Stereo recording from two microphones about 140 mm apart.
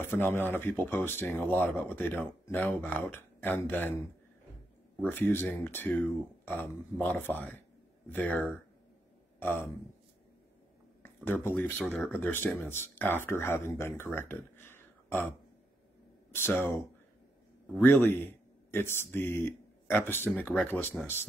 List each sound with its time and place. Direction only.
0.0 s speech: 15° left (ahead or behind)
5.0 s a man's voice: 15° left (ahead or behind)
11.0 s speech: 15° left (ahead or behind)
16.3 s a sound: 15° left (ahead or behind)
17.7 s speech: 15° left (ahead or behind)